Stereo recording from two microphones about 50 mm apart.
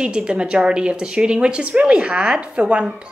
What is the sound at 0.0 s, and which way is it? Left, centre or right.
Speech, centre.